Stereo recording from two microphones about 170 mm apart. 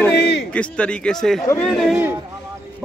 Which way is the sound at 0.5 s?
5° left (ahead or behind).